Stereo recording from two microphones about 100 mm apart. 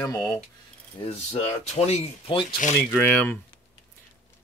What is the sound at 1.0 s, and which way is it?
Speech, 85° left.